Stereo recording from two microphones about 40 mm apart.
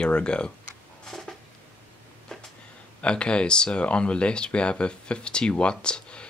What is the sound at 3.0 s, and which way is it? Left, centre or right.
Speech, left.